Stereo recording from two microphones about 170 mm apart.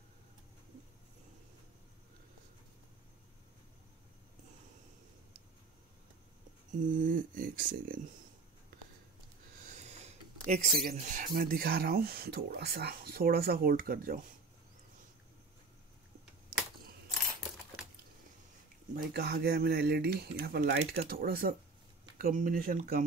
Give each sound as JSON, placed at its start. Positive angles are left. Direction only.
{"t": 6.8, "sound": "speech", "side_deg": -50}
{"t": 9.7, "sound": "speech", "side_deg": -40}
{"t": 18.9, "sound": "speech", "side_deg": -65}